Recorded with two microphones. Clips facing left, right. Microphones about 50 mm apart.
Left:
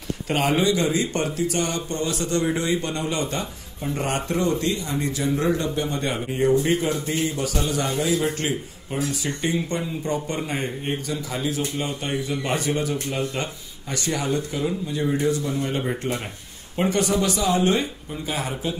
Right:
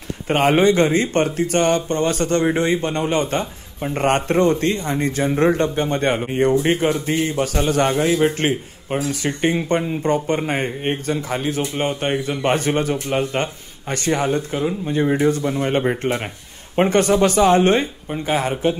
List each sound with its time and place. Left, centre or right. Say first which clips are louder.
0.3 s a man's voice: right 6 dB; right